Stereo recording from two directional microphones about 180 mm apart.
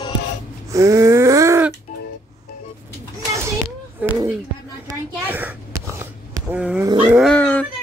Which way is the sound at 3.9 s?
10° right (ahead or behind).